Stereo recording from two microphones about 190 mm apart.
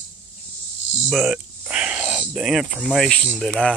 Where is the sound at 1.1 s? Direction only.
Centre (ahead or behind).